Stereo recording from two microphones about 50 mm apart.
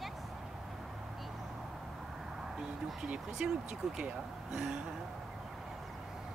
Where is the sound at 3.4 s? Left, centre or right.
Right.